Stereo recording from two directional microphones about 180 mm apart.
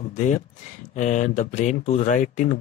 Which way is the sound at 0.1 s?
45° left (ahead or behind).